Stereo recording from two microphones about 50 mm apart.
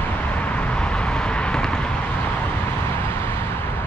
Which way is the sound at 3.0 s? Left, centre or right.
Left.